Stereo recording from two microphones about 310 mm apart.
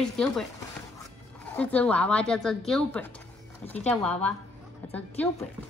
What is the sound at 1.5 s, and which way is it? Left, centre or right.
Speech, centre.